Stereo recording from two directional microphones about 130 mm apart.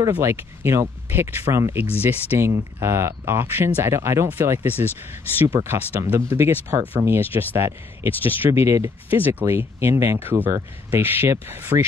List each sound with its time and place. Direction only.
0.1 s speech: 20° right (ahead or behind)